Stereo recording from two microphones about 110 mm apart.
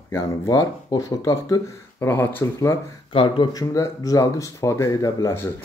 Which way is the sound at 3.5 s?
30° left (ahead or behind).